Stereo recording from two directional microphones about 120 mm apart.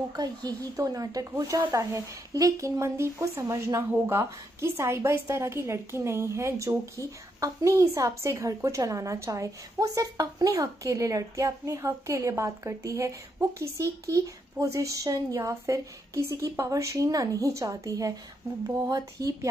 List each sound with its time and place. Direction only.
0.1 s a woman's voice: 35° right (ahead or behind)